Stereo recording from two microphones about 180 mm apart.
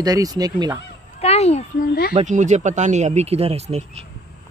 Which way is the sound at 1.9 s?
55° left (ahead or behind).